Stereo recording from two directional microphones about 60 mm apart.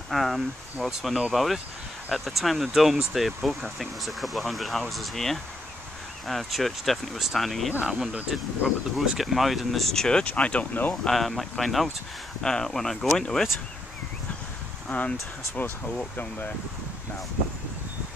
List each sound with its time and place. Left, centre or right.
0.1 s speech: centre
0.7 s speech: centre
1.3 s speech: centre; by 11.0 s left
11.1 s speech: centre
14.9 s speech: left